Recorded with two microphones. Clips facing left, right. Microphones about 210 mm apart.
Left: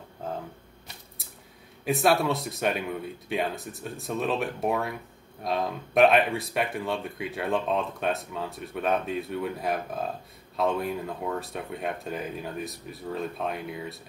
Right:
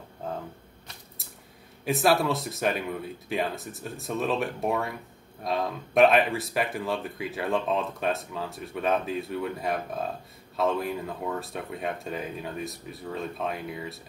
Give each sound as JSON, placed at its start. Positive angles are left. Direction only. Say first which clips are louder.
{"t": 1.9, "sound": "speech", "louder": "even", "side_deg": 0}